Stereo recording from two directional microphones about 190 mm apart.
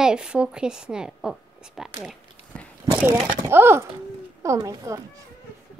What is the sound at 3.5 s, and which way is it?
A child's voice, 10° right (ahead or behind).